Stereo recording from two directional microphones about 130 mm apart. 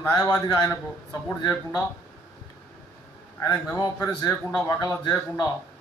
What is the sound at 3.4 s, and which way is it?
A man's voice, 20° left (ahead or behind).